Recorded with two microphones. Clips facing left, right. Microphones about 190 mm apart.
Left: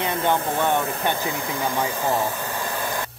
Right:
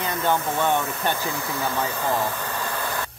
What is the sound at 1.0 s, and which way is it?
Speech, 15° left (ahead or behind).